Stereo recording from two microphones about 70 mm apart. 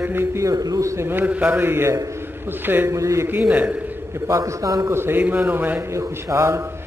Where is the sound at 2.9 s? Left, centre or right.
Right.